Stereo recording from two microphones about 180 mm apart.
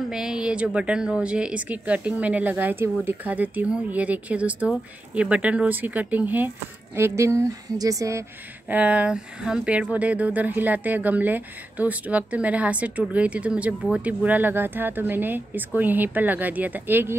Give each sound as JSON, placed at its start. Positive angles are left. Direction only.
{"t": 0.1, "sound": "speech", "side_deg": -5}